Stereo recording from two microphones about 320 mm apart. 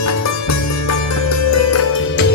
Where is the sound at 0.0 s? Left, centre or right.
Left.